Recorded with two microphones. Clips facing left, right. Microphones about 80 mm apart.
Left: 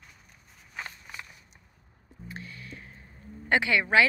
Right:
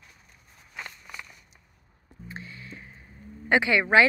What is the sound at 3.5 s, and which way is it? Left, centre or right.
Speech, right.